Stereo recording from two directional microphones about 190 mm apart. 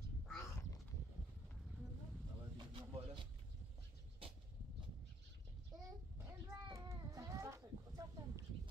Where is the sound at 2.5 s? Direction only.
25° right (ahead or behind).